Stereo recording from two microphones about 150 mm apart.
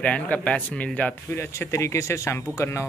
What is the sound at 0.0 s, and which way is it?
Speech, 10° left (ahead or behind).